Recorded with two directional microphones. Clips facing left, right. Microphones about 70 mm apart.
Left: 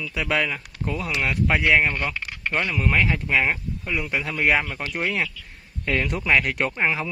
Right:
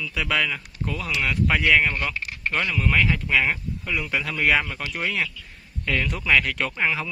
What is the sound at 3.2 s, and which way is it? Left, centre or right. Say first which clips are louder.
A man's voice: even; centre.